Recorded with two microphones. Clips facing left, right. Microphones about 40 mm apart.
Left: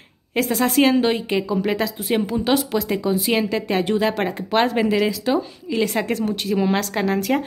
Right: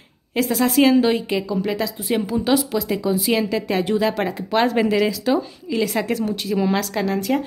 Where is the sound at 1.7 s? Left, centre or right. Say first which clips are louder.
Left 1 dB; left.